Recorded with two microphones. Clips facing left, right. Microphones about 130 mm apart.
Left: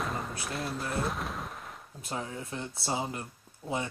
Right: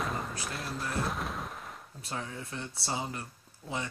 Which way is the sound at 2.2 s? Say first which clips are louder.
Left 2 dB; 30° left (ahead or behind).